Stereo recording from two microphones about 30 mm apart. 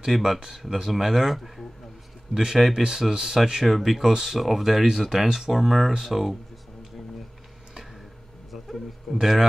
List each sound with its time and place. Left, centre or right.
0.0 s speech: centre
3.6 s speech: centre
4.0 s speech: centre
4.4 s speech: centre
8.5 s a man's voice: centre